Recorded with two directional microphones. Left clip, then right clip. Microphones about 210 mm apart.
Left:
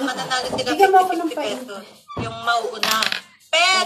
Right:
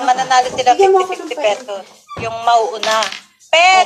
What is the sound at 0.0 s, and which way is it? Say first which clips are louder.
A woman's voice: right 11 dB; 20° left (ahead or behind).